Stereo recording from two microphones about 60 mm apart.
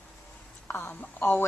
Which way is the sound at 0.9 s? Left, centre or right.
Left.